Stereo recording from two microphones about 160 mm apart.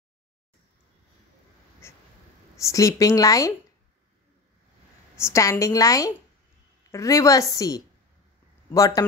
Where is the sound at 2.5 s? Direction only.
20° left (ahead or behind).